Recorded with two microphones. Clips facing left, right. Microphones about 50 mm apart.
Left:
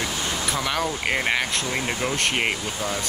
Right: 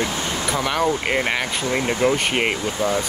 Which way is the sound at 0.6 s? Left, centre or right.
Centre.